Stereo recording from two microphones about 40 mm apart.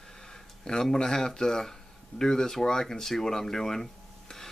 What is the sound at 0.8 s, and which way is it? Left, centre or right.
Speech, centre.